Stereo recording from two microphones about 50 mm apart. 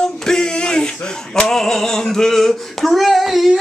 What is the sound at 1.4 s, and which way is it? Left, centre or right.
Female singing, centre.